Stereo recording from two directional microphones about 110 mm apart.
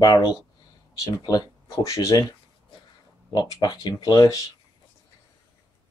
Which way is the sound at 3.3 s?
40° left (ahead or behind).